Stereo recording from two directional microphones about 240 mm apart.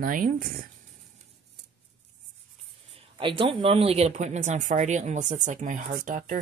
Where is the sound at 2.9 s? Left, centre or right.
Right.